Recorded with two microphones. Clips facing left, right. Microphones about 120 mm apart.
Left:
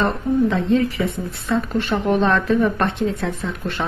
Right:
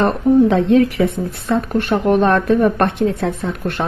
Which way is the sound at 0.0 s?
70° right (ahead or behind).